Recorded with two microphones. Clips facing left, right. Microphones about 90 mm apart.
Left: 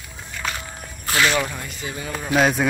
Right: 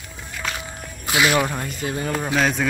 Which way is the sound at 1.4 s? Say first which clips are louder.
Right 4 dB; 40° right (ahead or behind).